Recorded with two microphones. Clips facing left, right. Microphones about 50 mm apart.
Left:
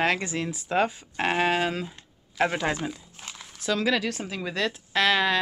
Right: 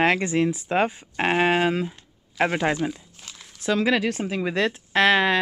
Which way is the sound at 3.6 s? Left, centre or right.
Right.